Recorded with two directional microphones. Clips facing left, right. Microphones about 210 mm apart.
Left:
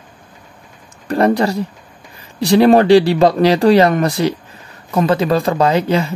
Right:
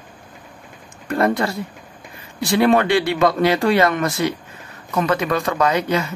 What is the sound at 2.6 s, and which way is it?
Speech, 35° left (ahead or behind).